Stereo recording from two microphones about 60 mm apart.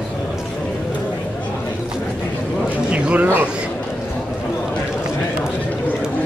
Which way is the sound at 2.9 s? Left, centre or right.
Centre.